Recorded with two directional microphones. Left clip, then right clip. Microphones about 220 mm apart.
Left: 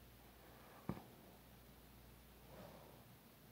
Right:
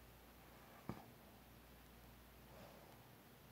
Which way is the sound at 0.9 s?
35° left (ahead or behind).